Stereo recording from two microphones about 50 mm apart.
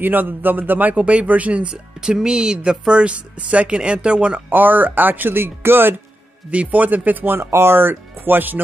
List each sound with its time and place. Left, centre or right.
0.0 s speech: right
2.0 s speech: centre
4.5 s speech: right
6.5 s speech: right
7.2 s speech: right